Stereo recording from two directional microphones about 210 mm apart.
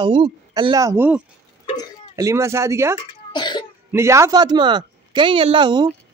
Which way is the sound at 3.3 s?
20° left (ahead or behind).